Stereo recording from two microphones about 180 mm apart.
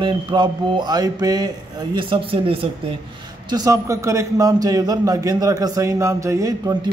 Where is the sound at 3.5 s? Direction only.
20° right (ahead or behind).